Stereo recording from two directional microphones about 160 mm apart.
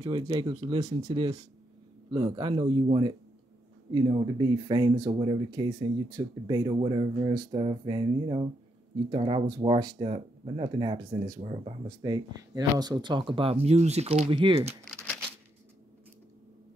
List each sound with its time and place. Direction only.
0.0 s speech: 25° right (ahead or behind)